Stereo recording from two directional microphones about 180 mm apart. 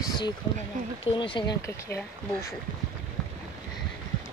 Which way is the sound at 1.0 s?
30° left (ahead or behind).